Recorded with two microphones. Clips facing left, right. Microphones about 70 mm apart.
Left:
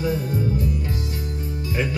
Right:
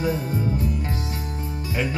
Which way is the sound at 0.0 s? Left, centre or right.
Right.